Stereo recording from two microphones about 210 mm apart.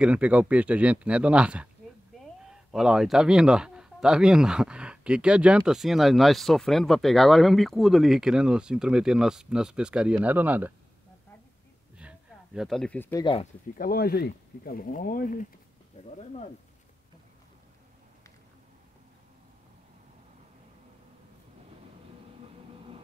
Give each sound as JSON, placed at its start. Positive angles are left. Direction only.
{"t": 0.0, "sound": "speech", "side_deg": -5}
{"t": 12.0, "sound": "a sound", "side_deg": -5}
{"t": 13.2, "sound": "speech", "side_deg": 25}
{"t": 13.7, "sound": "speech", "side_deg": 45}